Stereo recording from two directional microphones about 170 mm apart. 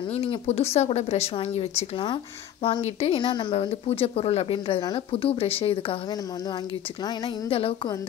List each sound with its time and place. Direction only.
0.1 s speech: 40° left (ahead or behind)
7.4 s speech: 35° left (ahead or behind)